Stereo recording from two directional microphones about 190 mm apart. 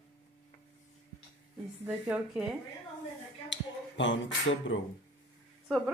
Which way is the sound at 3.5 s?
75° left (ahead or behind).